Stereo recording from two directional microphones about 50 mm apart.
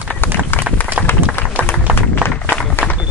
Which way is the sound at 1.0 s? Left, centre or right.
Right.